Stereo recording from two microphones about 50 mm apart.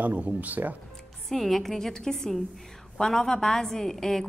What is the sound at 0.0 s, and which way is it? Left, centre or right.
Speech, right.